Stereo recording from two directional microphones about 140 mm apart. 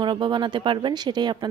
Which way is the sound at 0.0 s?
35° right (ahead or behind).